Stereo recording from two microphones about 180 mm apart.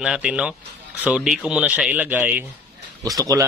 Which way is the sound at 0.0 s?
5° right (ahead or behind).